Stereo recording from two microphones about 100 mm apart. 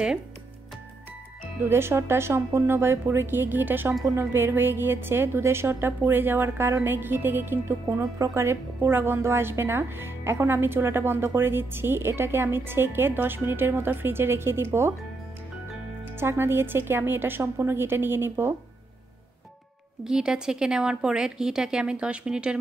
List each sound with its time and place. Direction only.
1.4 s a woman's voice: 25° right (ahead or behind)
16.2 s a woman's voice: 25° right (ahead or behind)
20.0 s speech: 5° right (ahead or behind)